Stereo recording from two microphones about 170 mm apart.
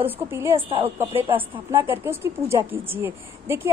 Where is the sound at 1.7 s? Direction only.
15° right (ahead or behind).